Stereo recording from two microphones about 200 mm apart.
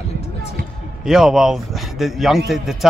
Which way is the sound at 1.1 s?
Centre (ahead or behind).